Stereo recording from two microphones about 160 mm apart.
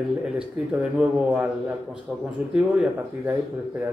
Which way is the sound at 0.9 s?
5° right (ahead or behind).